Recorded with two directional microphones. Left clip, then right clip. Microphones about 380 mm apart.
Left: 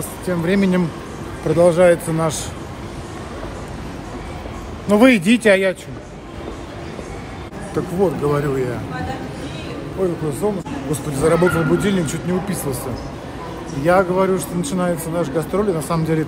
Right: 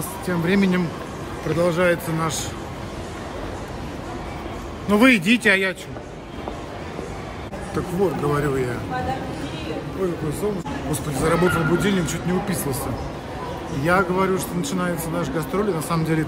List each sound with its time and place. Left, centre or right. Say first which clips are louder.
0.3 s a man's voice: left 3 dB; centre
4.8 s a man's voice: left 3 dB; centre
7.7 s a man's voice: left 4 dB; centre
10.4 s a man's voice: left 4 dB; centre
13.8 s a man's voice: left 4 dB; centre